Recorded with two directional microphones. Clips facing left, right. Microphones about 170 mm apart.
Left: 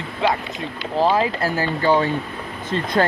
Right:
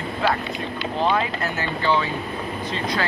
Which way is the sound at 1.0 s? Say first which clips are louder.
Left 4 dB; 30° left (ahead or behind).